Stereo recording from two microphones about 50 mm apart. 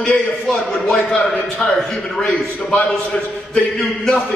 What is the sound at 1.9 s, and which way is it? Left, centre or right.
A man's voice, centre.